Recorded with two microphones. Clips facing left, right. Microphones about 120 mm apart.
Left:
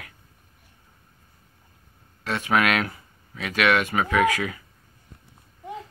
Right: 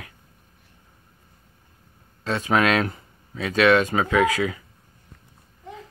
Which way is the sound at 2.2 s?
25° right (ahead or behind).